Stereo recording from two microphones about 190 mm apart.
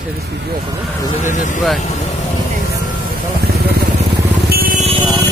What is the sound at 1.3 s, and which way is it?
Speech, 40° left (ahead or behind).